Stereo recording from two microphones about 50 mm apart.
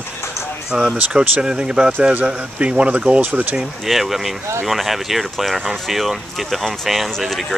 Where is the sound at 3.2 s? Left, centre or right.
Right.